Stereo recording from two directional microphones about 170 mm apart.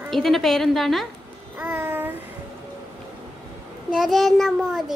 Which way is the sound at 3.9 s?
Centre (ahead or behind).